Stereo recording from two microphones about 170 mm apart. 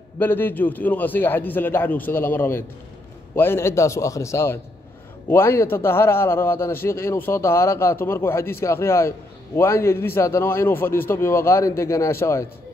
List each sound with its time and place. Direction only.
0.2 s a man's voice: 10° left (ahead or behind)